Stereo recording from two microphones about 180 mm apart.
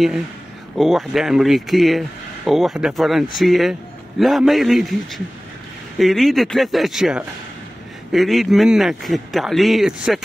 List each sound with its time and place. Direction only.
0.7 s a man's voice: centre (ahead or behind)